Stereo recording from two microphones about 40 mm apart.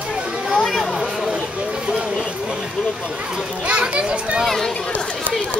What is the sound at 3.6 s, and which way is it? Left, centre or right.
Children playing, right.